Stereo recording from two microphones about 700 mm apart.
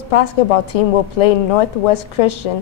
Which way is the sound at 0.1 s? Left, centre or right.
Left.